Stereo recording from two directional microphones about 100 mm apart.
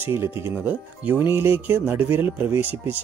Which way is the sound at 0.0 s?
25° right (ahead or behind).